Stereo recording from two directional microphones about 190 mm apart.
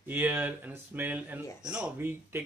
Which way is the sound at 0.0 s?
10° right (ahead or behind).